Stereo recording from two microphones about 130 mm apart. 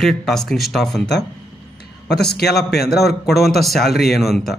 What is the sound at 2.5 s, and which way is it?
Speech, centre (ahead or behind).